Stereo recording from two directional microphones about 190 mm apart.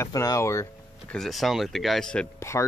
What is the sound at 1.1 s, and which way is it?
Speech, centre (ahead or behind).